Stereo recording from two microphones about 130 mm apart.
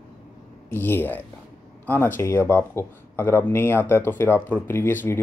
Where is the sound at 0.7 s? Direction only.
15° left (ahead or behind).